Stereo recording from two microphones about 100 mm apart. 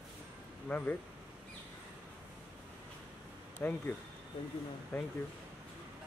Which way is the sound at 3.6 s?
15° left (ahead or behind).